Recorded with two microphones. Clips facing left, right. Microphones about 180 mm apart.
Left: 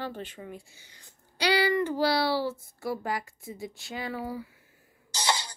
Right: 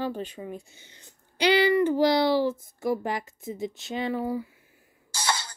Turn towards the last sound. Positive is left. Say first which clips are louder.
# even
turn(degrees=15)  # may be behind; listen again after turning